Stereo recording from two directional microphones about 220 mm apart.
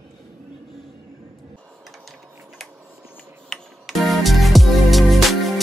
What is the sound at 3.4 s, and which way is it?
Music, centre (ahead or behind).